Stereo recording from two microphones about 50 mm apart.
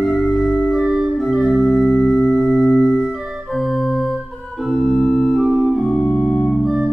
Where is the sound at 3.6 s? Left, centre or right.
Centre.